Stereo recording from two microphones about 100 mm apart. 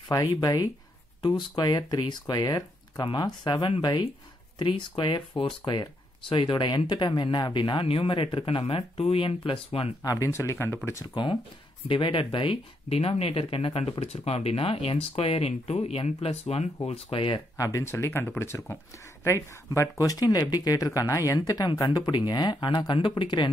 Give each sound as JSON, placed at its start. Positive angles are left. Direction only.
{"t": 0.4, "sound": "speech", "side_deg": 40}
{"t": 10.0, "sound": "speech", "side_deg": 30}
{"t": 11.2, "sound": "speech", "side_deg": 50}
{"t": 16.8, "sound": "speech", "side_deg": 70}
{"t": 17.6, "sound": "speech", "side_deg": 35}
{"t": 20.0, "sound": "speech", "side_deg": 40}